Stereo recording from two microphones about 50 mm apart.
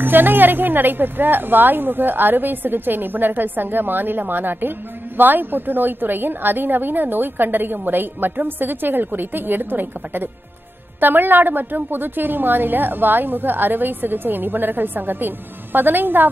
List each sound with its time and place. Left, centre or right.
0.0 s a woman's voice: right